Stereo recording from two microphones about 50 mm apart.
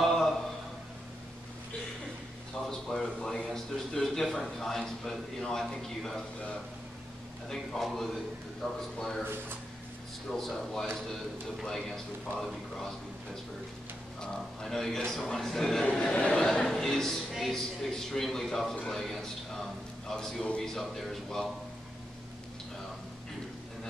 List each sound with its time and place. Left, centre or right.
0.0 s a sound: centre
2.7 s a sound: centre
4.4 s speech: centre
7.4 s a man's voice: centre
10.3 s speech: centre
14.2 s speech: centre
15.9 s speech: centre
16.4 s speech: centre
18.9 s a sound: centre
20.1 s speech: centre